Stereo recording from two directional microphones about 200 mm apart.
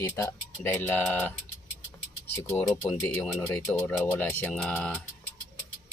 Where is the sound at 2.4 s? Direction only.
15° left (ahead or behind).